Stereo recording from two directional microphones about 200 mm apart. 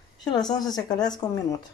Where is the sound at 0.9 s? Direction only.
20° left (ahead or behind).